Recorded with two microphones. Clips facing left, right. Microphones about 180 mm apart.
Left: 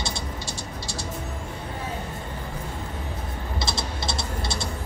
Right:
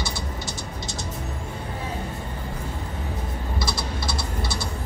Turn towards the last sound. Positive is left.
turn(degrees=25)  # may be behind; listen again after turning